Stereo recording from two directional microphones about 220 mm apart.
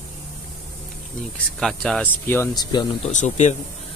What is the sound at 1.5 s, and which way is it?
Speech, 5° left (ahead or behind).